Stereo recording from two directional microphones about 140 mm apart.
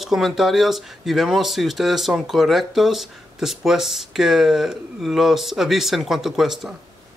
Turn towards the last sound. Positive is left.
turn(degrees=0)  # may be behind; listen again after turning